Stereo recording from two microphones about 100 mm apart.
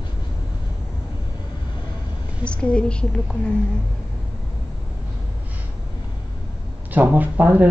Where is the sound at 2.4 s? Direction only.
10° left (ahead or behind).